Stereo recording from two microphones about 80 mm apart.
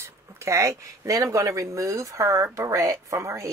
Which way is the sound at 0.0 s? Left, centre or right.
Right.